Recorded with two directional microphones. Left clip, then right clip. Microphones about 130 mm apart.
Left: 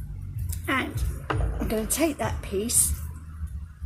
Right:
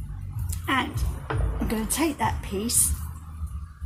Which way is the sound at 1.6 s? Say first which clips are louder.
Left 1 dB; 25° right (ahead or behind).